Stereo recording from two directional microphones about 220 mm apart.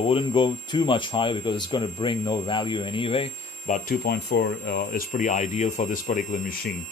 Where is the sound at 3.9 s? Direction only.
45° left (ahead or behind).